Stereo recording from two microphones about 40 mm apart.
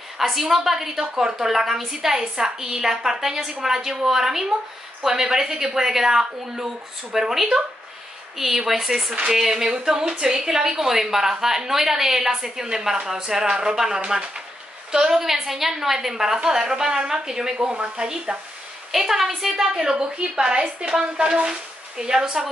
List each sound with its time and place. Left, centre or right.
0.2 s a woman's voice: centre